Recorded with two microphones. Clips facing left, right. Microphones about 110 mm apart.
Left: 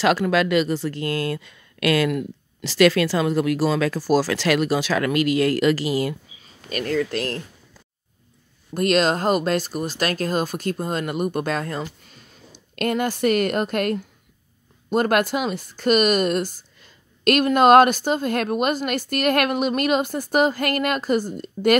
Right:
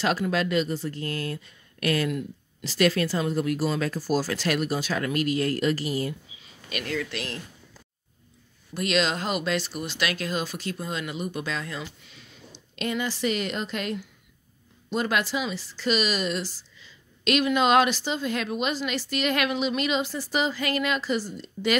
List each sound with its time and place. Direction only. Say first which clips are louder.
0.0 s speech: left 6 dB; 90° left
6.4 s speech: left 7 dB; 40° left (ahead or behind)
8.7 s speech: left 6 dB; 45° left (ahead or behind)